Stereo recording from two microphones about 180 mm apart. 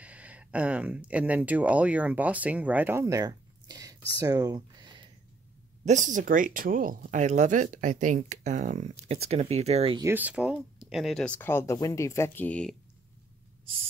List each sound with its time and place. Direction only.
0.0 s speech: 5° right (ahead or behind); by 5.1 s 25° right (ahead or behind)
5.9 s speech: 45° right (ahead or behind)
9.9 s speech: 10° right (ahead or behind); by 12.7 s 5° left (ahead or behind)